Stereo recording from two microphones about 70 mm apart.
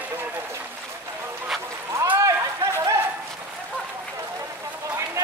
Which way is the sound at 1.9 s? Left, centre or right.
Right.